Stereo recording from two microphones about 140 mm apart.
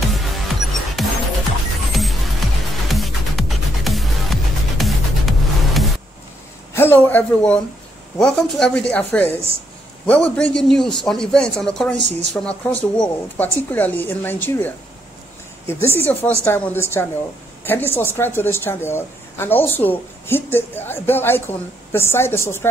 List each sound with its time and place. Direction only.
0.1 s music: centre (ahead or behind)
6.7 s a man's voice: 15° left (ahead or behind)